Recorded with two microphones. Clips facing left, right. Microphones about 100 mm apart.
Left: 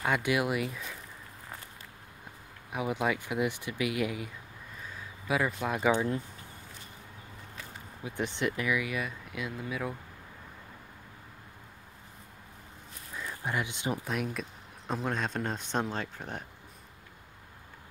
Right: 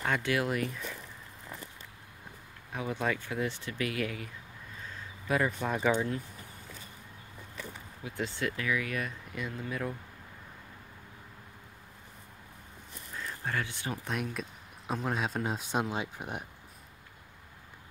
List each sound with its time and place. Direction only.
0.0 s speech: 15° left (ahead or behind)
2.7 s speech: 15° left (ahead or behind)
5.3 s speech: 5° left (ahead or behind)
8.0 s speech: 20° left (ahead or behind); by 9.9 s 5° left (ahead or behind)
13.1 s a sound: 10° left (ahead or behind)
14.0 s speech: centre (ahead or behind)